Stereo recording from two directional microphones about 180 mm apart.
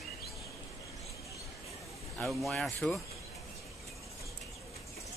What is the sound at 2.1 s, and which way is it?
Speech, centre (ahead or behind).